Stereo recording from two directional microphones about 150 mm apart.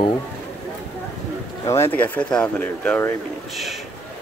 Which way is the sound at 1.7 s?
15° left (ahead or behind).